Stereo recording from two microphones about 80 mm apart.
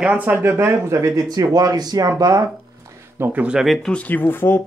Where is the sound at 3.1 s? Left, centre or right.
Right.